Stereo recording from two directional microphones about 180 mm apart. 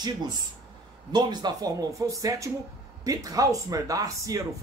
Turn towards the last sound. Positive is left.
turn(degrees=-20)  # may be behind; listen again after turning